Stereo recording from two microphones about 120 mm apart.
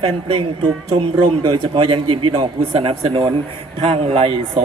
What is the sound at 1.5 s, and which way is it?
A man's voice, 40° right (ahead or behind).